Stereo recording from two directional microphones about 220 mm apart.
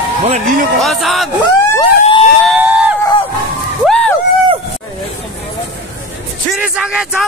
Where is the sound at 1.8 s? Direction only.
25° left (ahead or behind).